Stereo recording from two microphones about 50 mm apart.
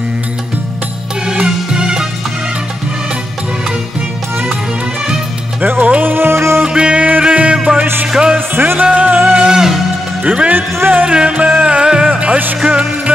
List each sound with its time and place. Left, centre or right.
1.2 s music: centre
5.6 s music: right
6.6 s music: right
7.8 s music: right
8.1 s music: centre
8.4 s music: right
8.8 s music: right
9.3 s music: centre
10.2 s speech: right
10.5 s speech: right
11.1 s music: right
12.2 s music: right
12.6 s music: right